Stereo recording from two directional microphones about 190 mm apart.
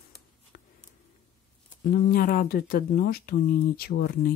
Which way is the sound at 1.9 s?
50° left (ahead or behind).